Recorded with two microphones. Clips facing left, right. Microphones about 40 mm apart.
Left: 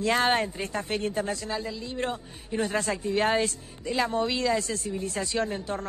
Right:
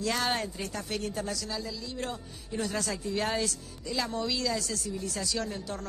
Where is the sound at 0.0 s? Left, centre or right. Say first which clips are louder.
Left 6 dB; left.